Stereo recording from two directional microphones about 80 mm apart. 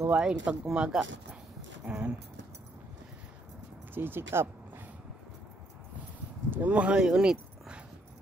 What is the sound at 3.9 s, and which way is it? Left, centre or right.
Speech, right.